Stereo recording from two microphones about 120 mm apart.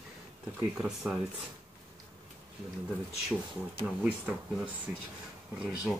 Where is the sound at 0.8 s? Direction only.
5° right (ahead or behind).